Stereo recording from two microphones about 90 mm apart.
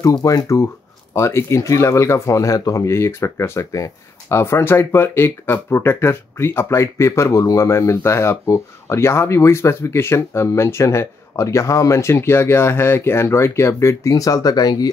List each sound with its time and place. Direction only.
0.2 s speech: 40° left (ahead or behind)